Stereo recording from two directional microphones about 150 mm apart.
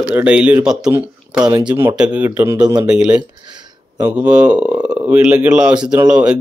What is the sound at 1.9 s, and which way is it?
A man's voice, 10° right (ahead or behind).